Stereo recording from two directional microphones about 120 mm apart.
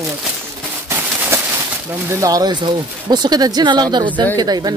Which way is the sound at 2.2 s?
30° right (ahead or behind).